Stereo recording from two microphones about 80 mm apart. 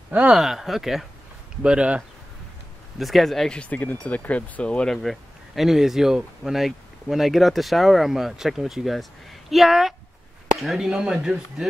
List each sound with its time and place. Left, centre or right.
0.1 s speech: centre
0.4 s speech: centre
1.6 s speech: centre
3.0 s speech: centre